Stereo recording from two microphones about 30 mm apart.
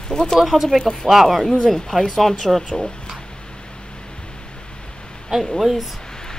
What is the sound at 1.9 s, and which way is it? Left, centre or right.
Speech, centre.